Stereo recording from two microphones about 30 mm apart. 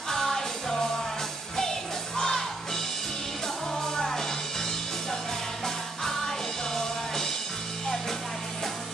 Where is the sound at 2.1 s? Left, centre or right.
Centre.